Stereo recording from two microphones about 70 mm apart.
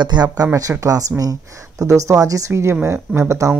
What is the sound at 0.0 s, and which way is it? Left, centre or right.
Speech, right.